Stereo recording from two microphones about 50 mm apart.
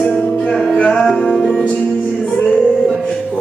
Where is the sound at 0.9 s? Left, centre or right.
Centre.